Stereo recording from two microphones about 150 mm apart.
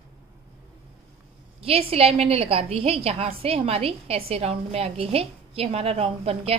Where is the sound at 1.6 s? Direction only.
40° right (ahead or behind).